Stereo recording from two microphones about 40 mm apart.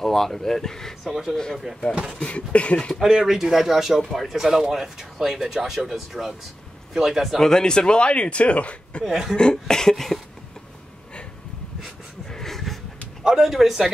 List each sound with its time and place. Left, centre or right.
0.0 s speech: centre
2.1 s speech: left
3.1 s speech: centre
7.3 s speech: centre; by 9.0 s left
9.0 s speech: centre
9.4 s speech: centre
12.3 s a sound: centre
13.2 s speech: centre